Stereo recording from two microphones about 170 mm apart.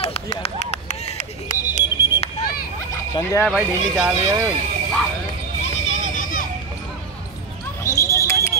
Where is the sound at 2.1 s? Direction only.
35° left (ahead or behind).